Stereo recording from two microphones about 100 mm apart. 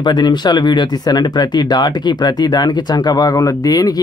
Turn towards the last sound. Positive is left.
turn(degrees=35)  # may be behind; listen again after turning